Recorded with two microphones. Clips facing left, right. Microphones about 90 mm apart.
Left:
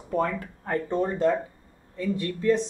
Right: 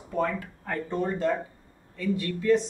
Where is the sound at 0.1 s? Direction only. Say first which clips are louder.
Left 2 dB; 30° left (ahead or behind).